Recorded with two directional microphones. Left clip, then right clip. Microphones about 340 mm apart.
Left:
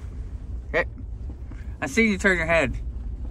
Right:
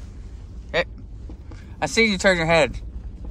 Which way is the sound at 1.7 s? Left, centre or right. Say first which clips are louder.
Right 3 dB; centre.